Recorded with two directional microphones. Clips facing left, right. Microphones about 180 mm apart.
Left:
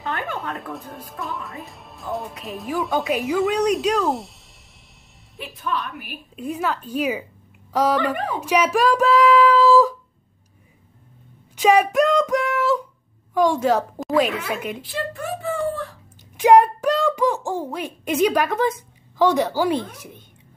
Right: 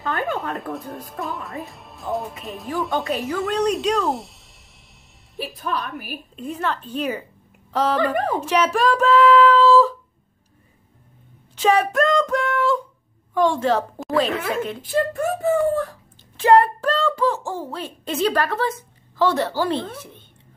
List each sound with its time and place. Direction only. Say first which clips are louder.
0.7 s speech: right 3 dB; centre (ahead or behind)
5.4 s a woman's voice: right 1 dB; 40° right (ahead or behind)
6.3 s a woman's voice: left 1 dB; 5° left (ahead or behind)
11.5 s a woman's voice: left 2 dB; 10° left (ahead or behind)
14.8 s speech: right 7 dB; 50° right (ahead or behind)
16.3 s a sound: left 1 dB; 15° left (ahead or behind)
17.5 s a woman's voice: left 3 dB; 15° left (ahead or behind)